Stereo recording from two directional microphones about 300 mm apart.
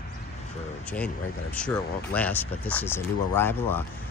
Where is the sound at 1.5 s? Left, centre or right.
Centre.